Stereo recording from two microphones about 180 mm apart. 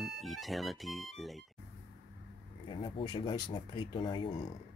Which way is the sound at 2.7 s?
30° left (ahead or behind).